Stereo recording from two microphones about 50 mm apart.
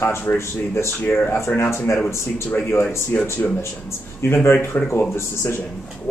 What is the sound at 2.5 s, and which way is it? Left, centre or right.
Speech, left.